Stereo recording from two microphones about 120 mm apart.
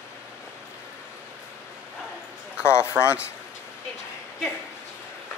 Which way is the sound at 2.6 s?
20° left (ahead or behind).